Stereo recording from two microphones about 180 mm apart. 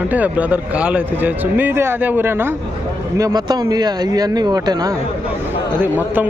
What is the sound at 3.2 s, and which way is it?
Speech, 20° right (ahead or behind).